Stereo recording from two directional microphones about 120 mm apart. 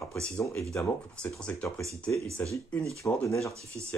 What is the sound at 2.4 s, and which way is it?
Speech, 15° left (ahead or behind).